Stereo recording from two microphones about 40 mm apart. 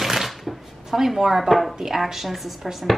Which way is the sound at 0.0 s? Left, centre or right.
Centre.